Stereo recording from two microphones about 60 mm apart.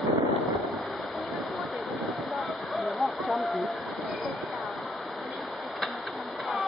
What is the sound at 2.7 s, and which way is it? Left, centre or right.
Waterfall, centre.